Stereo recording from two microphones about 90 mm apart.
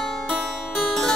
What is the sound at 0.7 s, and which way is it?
Harpsichord, 5° left (ahead or behind).